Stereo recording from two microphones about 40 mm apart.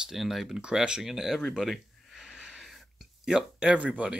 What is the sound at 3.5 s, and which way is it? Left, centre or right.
Speech, right.